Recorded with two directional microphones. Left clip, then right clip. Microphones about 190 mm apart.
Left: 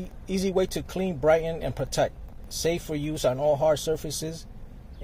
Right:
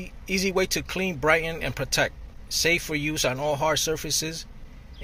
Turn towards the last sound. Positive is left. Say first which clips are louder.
# right 3 dB
turn(degrees=5)  # may be behind; listen again after turning